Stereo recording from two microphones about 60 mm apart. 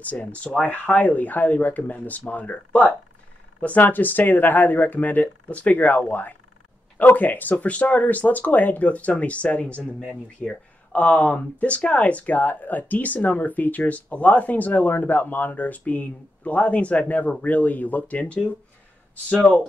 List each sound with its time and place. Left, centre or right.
0.0 s speech: left